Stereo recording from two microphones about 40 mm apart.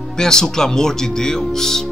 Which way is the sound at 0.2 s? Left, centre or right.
Centre.